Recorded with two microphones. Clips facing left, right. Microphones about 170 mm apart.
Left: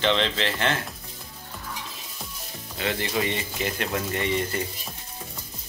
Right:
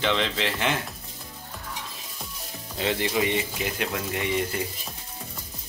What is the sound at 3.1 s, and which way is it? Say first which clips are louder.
Speech: right 2 dB; 5° right (ahead or behind).